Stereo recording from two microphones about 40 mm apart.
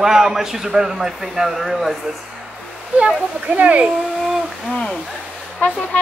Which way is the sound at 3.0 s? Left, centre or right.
Right.